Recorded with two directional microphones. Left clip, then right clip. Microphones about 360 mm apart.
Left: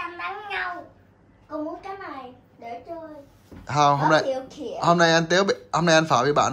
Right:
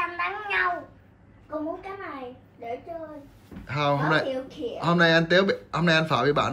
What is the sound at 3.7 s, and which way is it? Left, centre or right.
Speech, centre.